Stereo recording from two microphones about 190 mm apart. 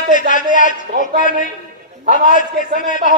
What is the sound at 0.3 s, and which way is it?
A man's voice, 45° left (ahead or behind).